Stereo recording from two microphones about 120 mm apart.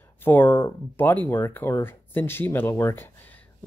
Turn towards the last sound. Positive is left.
turn(degrees=15)  # may be behind; listen again after turning